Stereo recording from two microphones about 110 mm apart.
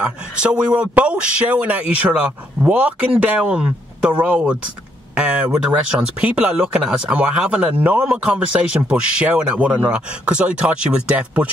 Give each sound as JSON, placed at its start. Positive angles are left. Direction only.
{"t": 0.0, "sound": "speech", "side_deg": -10}